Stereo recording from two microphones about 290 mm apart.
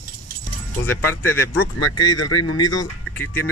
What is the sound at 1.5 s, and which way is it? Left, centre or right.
Speech, left.